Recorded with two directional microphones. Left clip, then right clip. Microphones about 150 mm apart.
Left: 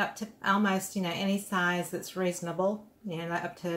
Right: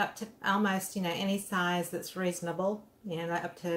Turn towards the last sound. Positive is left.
turn(degrees=-15)  # may be behind; listen again after turning